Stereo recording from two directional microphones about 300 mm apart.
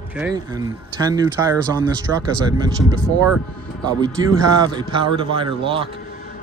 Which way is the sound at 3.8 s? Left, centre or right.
Centre.